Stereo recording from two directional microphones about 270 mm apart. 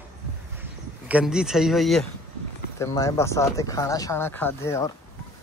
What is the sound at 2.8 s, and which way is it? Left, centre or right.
Speech, centre.